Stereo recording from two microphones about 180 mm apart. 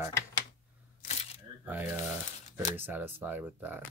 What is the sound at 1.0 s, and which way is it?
Camera, 40° left (ahead or behind).